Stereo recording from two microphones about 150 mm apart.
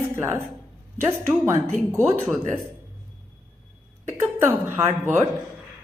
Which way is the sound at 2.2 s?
5° right (ahead or behind).